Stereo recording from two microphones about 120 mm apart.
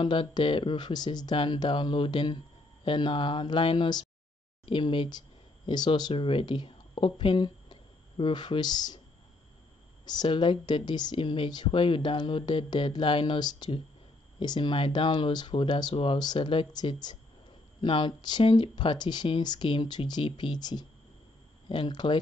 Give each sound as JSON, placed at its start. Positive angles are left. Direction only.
{"t": 0.0, "sound": "speech", "side_deg": 40}
{"t": 10.0, "sound": "speech", "side_deg": 40}